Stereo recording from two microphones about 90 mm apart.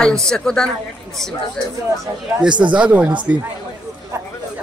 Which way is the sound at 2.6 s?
15° right (ahead or behind).